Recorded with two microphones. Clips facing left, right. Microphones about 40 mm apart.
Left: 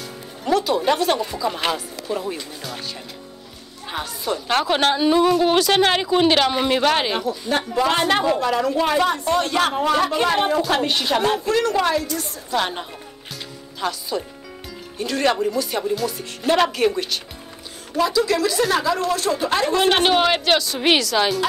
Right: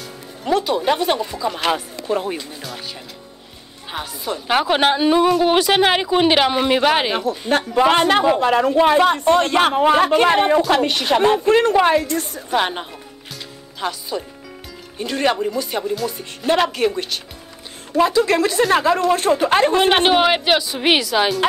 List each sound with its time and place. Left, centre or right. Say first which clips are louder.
0.7 s speech: right 1 dB; centre
1.2 s speech: right 1 dB; centre
1.7 s speech: right 4 dB; right
3.9 s speech: left 1 dB; centre
7.2 s a woman's voice: right 3 dB; right
7.7 s a woman's voice: right 5 dB; right
9.0 s a woman's voice: right 5 dB; right
11.1 s a woman's voice: right 7 dB; right
12.5 s a woman's voice: right 3 dB; right
13.7 s speech: even; centre
15.8 s speech: even; centre
16.1 s speech: right 1 dB; centre
17.9 s a woman's voice: right 4 dB; right
19.8 s speech: right 2 dB; centre